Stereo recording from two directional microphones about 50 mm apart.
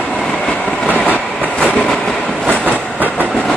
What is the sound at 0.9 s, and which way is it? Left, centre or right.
Train, left.